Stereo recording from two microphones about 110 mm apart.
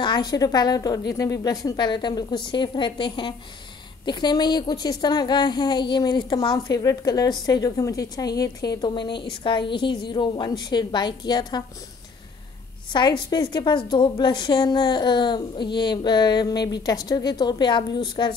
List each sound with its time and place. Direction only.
0.0 s a woman's voice: 40° left (ahead or behind)
12.9 s a woman's voice: 45° left (ahead or behind)